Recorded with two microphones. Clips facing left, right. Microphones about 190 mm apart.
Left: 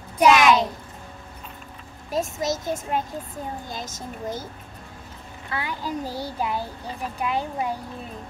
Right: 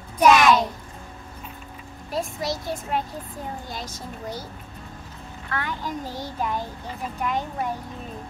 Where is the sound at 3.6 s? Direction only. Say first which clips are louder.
Left 1 dB; 45° left (ahead or behind).